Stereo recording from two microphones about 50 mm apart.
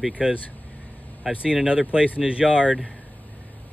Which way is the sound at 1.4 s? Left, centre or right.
Centre.